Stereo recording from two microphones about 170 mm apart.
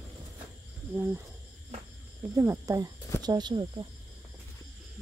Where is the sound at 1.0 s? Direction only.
10° right (ahead or behind).